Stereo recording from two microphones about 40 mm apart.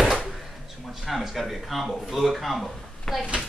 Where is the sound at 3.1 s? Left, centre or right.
Centre.